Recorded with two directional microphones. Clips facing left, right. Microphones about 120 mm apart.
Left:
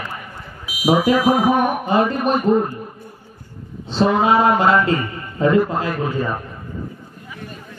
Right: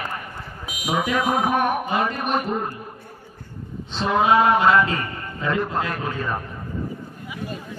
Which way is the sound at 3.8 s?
35° left (ahead or behind).